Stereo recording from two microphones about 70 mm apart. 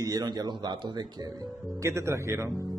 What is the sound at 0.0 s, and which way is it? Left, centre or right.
Speech, right.